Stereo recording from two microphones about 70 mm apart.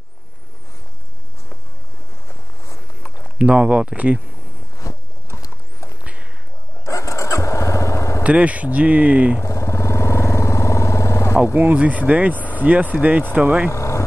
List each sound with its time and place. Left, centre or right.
2.2 s a sound: left
3.3 s speech: centre
4.9 s walk: left
6.9 s vehicle: left
8.2 s speech: centre
9.4 s vehicle: left
11.5 s speech: right
12.4 s vehicle: left
12.6 s speech: right
13.7 s vehicle: left